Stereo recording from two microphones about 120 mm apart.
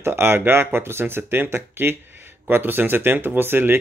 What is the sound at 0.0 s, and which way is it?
Speech, 20° right (ahead or behind).